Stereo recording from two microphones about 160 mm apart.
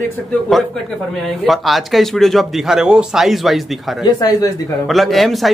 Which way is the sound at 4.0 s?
25° left (ahead or behind).